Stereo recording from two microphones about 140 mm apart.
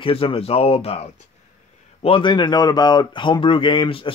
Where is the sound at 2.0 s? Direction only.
40° left (ahead or behind).